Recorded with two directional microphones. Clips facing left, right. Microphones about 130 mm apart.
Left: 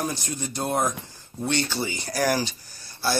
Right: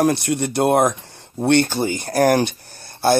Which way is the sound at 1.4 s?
55° right (ahead or behind).